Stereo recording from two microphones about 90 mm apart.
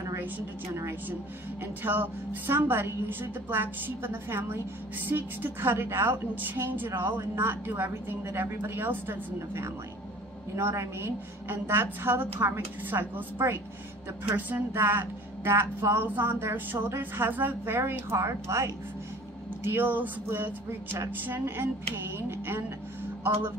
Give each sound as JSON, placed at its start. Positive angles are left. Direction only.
{"t": 1.6, "sound": "a woman's voice", "side_deg": -20}